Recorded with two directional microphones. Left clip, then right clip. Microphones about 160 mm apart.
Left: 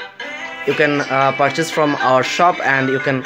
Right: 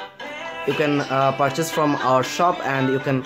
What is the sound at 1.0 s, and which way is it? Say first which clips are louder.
Speech: left 4 dB; 10° left (ahead or behind).